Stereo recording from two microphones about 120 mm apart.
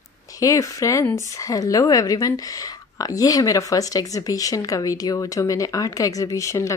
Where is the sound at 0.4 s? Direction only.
30° left (ahead or behind).